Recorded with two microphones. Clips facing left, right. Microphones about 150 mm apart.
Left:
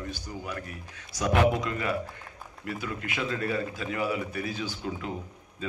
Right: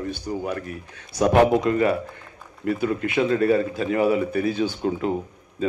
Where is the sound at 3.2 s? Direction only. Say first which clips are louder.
Right 10 dB; 50° right (ahead or behind).